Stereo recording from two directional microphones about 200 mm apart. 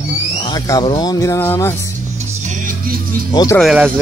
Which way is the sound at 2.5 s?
40° right (ahead or behind).